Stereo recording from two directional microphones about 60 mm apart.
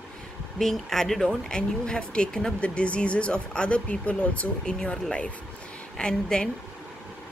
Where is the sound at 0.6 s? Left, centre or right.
Centre.